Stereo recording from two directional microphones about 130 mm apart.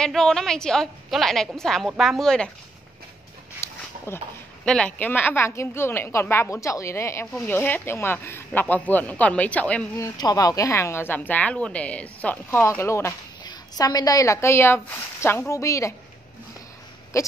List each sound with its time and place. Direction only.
0.0 s a woman's voice: 5° left (ahead or behind)
3.6 s dog: 20° left (ahead or behind)
4.6 s a woman's voice: 5° left (ahead or behind)
9.9 s a woman's voice: 25° left (ahead or behind)
17.1 s a sound: 20° left (ahead or behind)